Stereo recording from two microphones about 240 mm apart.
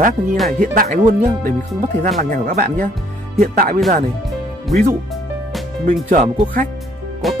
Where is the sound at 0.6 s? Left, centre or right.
Right.